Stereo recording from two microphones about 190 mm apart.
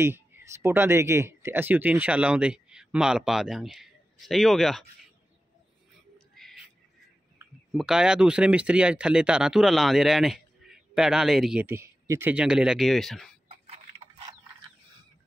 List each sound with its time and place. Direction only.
0.0 s speech: 15° right (ahead or behind)
6.1 s music: centre (ahead or behind)
7.7 s speech: 5° right (ahead or behind)
11.6 s speech: 15° right (ahead or behind)
13.5 s a sound: 30° right (ahead or behind)